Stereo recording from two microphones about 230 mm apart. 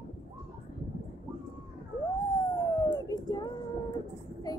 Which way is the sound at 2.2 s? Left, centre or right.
Centre.